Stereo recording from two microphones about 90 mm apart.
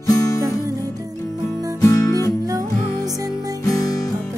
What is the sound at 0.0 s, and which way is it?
Music, 40° left (ahead or behind).